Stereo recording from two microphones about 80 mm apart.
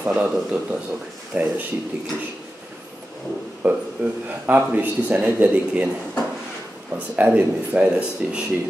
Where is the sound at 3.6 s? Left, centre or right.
Right.